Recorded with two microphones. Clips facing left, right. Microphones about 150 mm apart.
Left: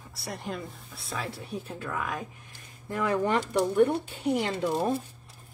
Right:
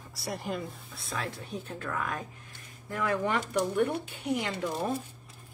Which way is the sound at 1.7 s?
10° left (ahead or behind).